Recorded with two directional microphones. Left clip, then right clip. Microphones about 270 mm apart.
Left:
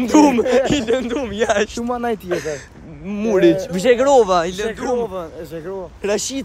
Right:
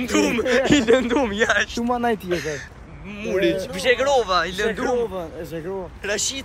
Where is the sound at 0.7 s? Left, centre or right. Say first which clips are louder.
Right 2 dB; centre.